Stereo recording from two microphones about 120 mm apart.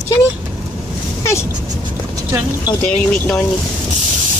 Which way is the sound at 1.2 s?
25° left (ahead or behind).